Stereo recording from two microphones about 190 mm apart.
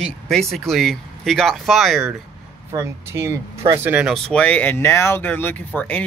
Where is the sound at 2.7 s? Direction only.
15° right (ahead or behind).